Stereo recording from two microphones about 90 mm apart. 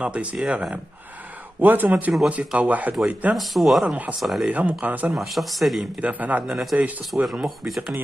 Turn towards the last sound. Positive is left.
turn(degrees=-5)  # may be behind; listen again after turning